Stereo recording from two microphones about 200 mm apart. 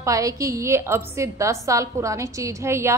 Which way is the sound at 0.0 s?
15° right (ahead or behind).